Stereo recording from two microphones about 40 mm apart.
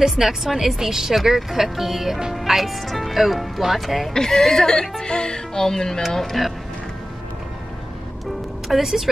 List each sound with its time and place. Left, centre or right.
0.0 s speech: centre
4.1 s music: centre
5.0 s music: left
6.1 s speech: centre
8.6 s speech: centre